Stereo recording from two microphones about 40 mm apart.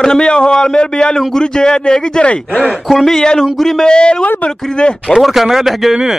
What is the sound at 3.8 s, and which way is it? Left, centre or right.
A man's voice, left.